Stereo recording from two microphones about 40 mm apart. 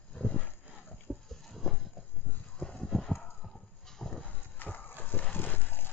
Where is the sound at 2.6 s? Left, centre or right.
Centre.